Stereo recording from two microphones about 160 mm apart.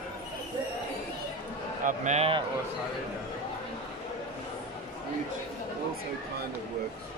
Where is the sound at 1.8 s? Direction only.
50° right (ahead or behind).